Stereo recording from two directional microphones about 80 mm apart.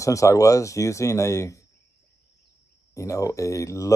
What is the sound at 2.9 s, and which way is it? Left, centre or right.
Speech, left.